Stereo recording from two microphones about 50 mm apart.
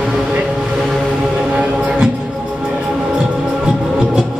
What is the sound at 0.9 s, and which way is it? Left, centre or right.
Music, centre.